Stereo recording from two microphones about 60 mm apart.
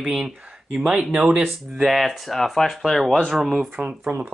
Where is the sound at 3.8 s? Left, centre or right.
Right.